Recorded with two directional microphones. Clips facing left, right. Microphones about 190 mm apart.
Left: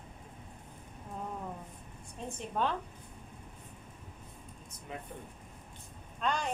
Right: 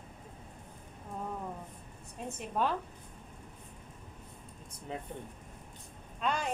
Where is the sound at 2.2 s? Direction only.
5° right (ahead or behind).